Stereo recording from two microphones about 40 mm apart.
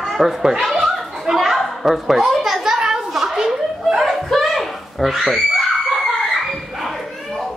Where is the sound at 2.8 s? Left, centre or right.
Centre.